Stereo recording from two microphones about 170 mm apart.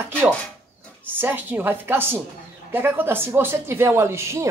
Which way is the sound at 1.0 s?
10° right (ahead or behind).